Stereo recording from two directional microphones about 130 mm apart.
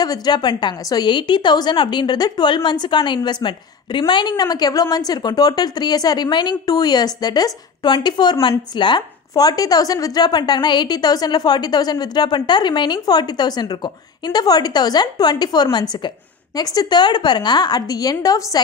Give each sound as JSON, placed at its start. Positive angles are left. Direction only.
{"t": 0.0, "sound": "a woman's voice", "side_deg": 30}